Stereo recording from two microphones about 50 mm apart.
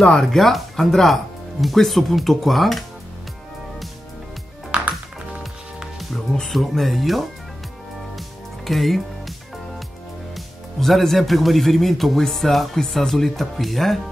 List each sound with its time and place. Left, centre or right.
0.1 s speech: centre
4.6 s music: right
5.9 s music: centre
6.5 s speech: centre
8.2 s music: centre
10.3 s speech: centre